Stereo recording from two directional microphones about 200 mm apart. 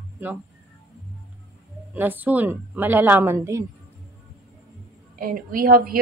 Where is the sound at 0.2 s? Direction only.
10° right (ahead or behind).